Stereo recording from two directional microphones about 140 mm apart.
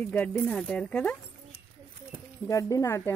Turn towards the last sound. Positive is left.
turn(degrees=20)  # may be behind; listen again after turning